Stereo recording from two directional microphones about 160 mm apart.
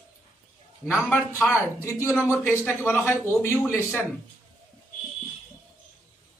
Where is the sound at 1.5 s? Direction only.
15° left (ahead or behind).